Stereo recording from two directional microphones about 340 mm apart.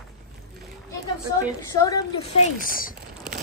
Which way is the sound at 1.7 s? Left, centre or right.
Centre.